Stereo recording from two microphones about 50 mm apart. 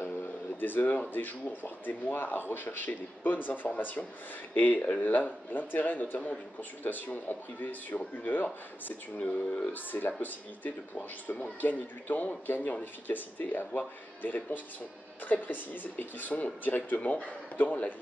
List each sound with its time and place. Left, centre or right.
0.0 s a sound: left
1.1 s speech: left
9.2 s speech: left
9.7 s speech: left